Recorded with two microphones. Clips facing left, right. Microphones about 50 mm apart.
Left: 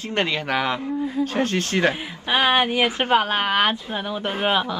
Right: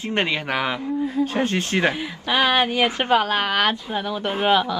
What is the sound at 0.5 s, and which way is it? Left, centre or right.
Speech, centre.